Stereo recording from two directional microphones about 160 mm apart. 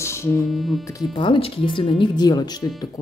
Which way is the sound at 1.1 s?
30° left (ahead or behind).